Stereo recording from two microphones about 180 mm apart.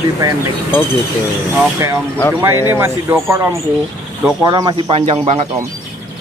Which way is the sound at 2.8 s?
15° right (ahead or behind).